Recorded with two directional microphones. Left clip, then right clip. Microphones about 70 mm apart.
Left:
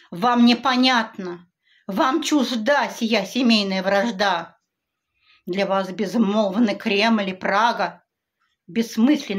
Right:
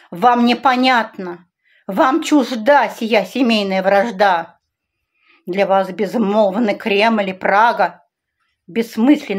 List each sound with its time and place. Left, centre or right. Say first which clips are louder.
0.0 s a woman's voice: right 5 dB; right